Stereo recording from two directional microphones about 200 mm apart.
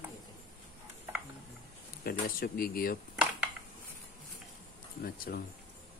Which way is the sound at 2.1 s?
50° left (ahead or behind).